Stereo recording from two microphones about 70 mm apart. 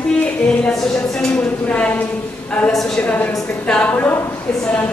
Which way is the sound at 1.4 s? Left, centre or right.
Centre.